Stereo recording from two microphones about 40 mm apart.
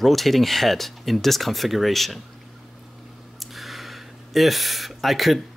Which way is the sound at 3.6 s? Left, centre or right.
Centre.